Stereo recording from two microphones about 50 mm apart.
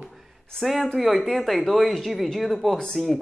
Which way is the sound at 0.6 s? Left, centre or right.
Centre.